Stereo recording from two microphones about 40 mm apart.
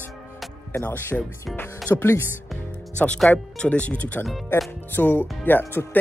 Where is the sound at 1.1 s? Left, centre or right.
Left.